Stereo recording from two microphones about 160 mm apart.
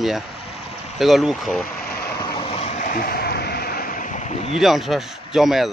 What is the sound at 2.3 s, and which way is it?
Vehicle, 35° left (ahead or behind).